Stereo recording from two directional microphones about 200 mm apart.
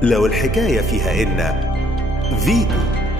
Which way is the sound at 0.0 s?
Centre (ahead or behind).